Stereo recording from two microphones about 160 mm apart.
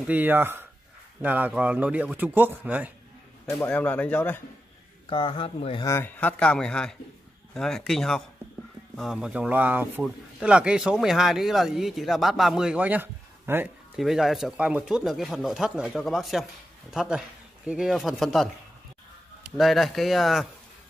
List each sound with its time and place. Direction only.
0.0 s a man's voice: 10° right (ahead or behind)
3.5 s speech: 10° left (ahead or behind)
5.1 s speech: 30° left (ahead or behind)
5.9 s speech: 15° left (ahead or behind); by 13.7 s 10° right (ahead or behind)
13.9 s speech: centre (ahead or behind)
19.5 s speech: centre (ahead or behind)